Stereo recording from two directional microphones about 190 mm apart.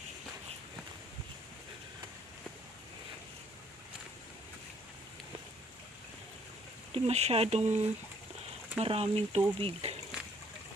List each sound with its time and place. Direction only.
6.9 s speech: 35° right (ahead or behind)